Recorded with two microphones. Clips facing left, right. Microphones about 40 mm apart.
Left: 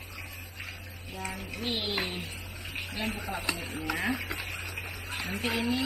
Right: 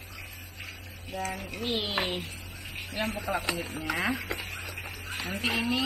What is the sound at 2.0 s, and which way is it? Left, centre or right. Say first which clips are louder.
Speech: right 3 dB; right.